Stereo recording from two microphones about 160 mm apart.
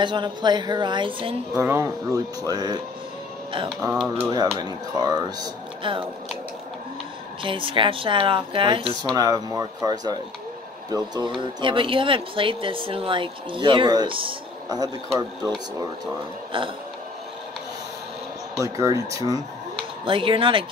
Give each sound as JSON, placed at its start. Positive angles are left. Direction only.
{"t": 0.0, "sound": "speech", "side_deg": -30}
{"t": 1.6, "sound": "speech", "side_deg": -15}
{"t": 3.9, "sound": "speech", "side_deg": -5}
{"t": 4.3, "sound": "speech", "side_deg": -25}
{"t": 7.4, "sound": "speech", "side_deg": -30}
{"t": 16.5, "sound": "speech", "side_deg": -30}
{"t": 18.6, "sound": "speech", "side_deg": -20}
{"t": 20.1, "sound": "speech", "side_deg": -35}